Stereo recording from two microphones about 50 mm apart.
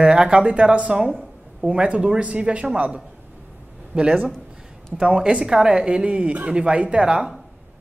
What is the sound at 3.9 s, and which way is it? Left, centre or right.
Speech, right.